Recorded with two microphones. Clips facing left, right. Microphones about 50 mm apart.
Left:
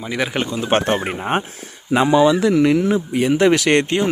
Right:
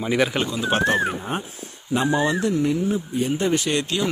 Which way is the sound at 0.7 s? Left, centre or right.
Left.